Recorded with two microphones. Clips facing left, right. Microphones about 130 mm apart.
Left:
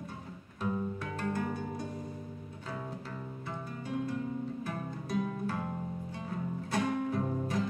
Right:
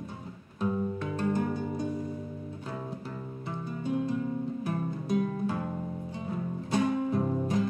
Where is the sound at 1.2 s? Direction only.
20° right (ahead or behind).